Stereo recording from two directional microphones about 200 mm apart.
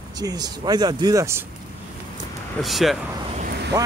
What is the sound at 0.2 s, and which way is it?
Speech, 20° right (ahead or behind).